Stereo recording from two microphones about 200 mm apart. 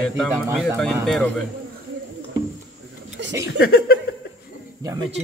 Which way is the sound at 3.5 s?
50° left (ahead or behind).